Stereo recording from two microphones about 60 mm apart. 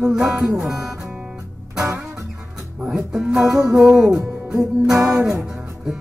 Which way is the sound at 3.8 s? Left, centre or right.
Centre.